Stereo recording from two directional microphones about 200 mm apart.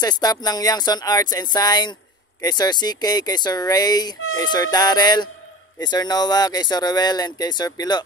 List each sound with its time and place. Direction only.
0.0 s speech: 20° left (ahead or behind)